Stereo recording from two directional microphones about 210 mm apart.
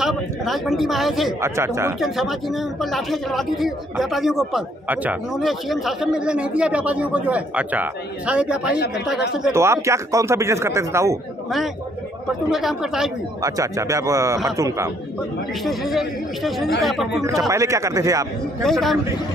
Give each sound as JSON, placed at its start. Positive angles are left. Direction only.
{"t": 0.0, "sound": "speech", "side_deg": 0}
{"t": 1.4, "sound": "speech", "side_deg": -10}
{"t": 2.0, "sound": "speech", "side_deg": 0}
{"t": 8.6, "sound": "speech", "side_deg": 50}
{"t": 8.9, "sound": "speech", "side_deg": -5}
{"t": 12.4, "sound": "speech", "side_deg": 0}
{"t": 13.4, "sound": "speech", "side_deg": -15}
{"t": 15.6, "sound": "speech", "side_deg": 0}
{"t": 17.5, "sound": "speech", "side_deg": -15}
{"t": 18.6, "sound": "speech", "side_deg": 0}